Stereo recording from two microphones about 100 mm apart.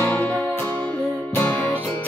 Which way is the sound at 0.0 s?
25° left (ahead or behind).